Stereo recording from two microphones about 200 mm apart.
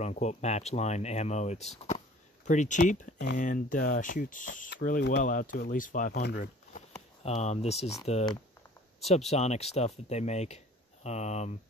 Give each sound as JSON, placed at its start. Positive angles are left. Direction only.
{"t": 0.0, "sound": "speech", "side_deg": 35}
{"t": 7.2, "sound": "speech", "side_deg": 35}
{"t": 9.3, "sound": "speech", "side_deg": 35}